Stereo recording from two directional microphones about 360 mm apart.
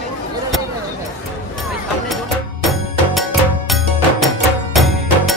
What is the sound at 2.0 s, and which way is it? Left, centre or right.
Music, centre.